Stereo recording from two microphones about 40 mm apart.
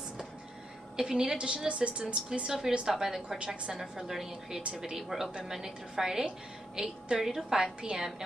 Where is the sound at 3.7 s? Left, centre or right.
Centre.